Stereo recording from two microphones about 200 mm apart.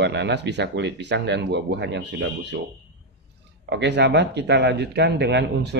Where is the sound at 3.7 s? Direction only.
60° right (ahead or behind).